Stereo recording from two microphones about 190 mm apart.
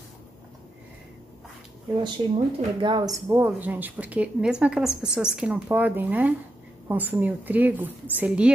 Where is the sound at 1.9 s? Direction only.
25° right (ahead or behind).